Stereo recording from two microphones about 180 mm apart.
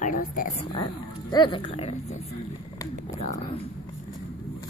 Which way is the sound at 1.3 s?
25° left (ahead or behind).